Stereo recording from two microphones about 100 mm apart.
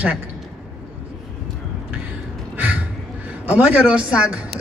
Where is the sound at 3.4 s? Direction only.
15° right (ahead or behind).